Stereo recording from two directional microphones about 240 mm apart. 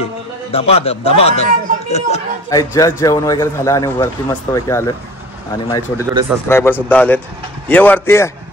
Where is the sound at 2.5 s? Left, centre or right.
Centre.